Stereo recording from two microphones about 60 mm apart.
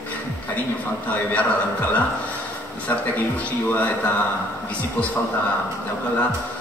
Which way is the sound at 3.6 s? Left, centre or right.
Left.